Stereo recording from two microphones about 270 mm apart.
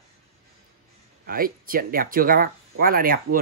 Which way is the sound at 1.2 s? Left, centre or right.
Right.